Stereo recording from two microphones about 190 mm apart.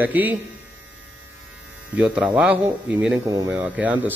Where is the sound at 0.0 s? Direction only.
10° right (ahead or behind).